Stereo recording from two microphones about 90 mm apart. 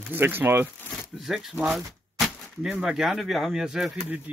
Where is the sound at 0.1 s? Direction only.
25° right (ahead or behind).